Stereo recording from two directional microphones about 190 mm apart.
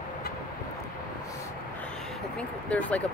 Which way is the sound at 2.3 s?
5° left (ahead or behind).